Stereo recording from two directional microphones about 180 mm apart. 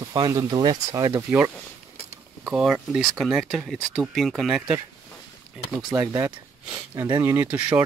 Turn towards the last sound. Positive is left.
turn(degrees=-10)  # may be behind; listen again after turning